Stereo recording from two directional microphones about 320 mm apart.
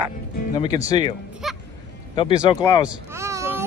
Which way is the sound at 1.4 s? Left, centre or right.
Centre.